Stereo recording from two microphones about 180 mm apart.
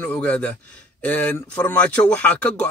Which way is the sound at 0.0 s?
10° left (ahead or behind).